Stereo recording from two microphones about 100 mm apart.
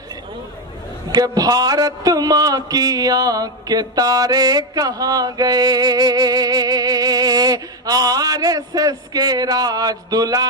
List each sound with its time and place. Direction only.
1.1 s speech: 40° right (ahead or behind)